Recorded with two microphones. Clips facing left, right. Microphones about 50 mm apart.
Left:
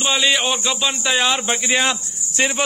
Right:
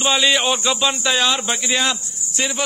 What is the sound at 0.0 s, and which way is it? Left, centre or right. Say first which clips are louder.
Speech: right 1 dB; centre.